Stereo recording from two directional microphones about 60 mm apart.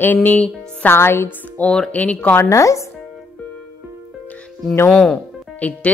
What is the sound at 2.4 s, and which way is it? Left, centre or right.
Speech, left.